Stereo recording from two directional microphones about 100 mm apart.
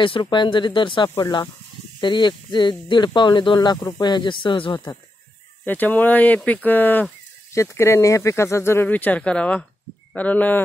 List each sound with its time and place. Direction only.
0.0 s speech: 55° left (ahead or behind)
5.7 s speech: 15° left (ahead or behind)
8.8 s speech: 15° left (ahead or behind)